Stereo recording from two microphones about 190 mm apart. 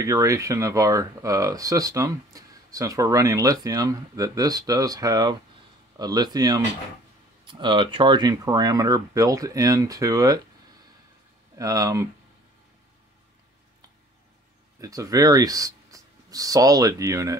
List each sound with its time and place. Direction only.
0.0 s speech: 15° right (ahead or behind)
11.5 s speech: 20° right (ahead or behind)
14.8 s speech: 20° right (ahead or behind)